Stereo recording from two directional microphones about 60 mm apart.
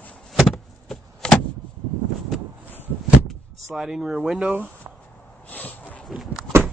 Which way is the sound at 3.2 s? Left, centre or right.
Centre.